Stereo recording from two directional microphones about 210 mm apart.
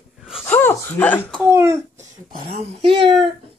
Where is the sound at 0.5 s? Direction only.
10° left (ahead or behind).